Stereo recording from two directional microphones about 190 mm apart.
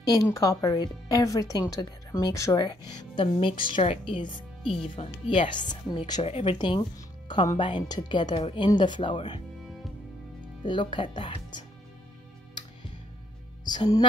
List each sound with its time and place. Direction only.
0.1 s a woman's voice: 20° left (ahead or behind)
10.4 s speech: 25° left (ahead or behind)
13.7 s a woman's voice: 20° left (ahead or behind)